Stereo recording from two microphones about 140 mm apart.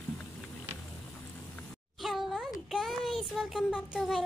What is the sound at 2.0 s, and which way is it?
A child's voice, centre (ahead or behind).